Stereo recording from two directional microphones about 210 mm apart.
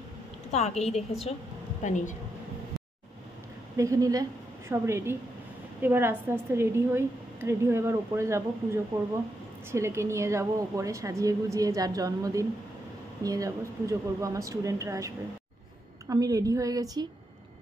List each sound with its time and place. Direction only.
0.5 s a woman's voice: 30° left (ahead or behind)
3.7 s a woman's voice: 15° right (ahead or behind)